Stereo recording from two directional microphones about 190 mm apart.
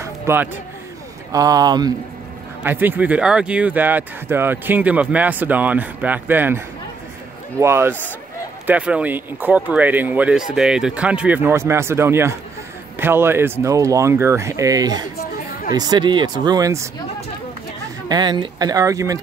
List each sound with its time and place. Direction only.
0.0 s a sound: 10° right (ahead or behind)
1.3 s speech: 20° right (ahead or behind)
2.6 s speech: 10° right (ahead or behind)
18.0 s speech: 20° right (ahead or behind)